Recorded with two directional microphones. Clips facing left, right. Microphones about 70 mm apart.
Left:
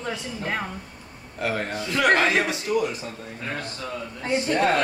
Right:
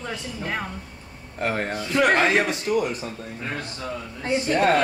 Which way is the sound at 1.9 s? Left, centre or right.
Centre.